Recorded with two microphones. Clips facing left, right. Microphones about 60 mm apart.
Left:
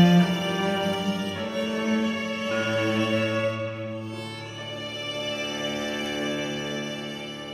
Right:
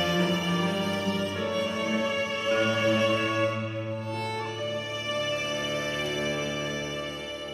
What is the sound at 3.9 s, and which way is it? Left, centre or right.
Music, right.